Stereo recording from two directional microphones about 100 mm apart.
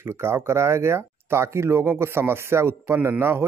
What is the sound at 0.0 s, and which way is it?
Speech, 25° right (ahead or behind).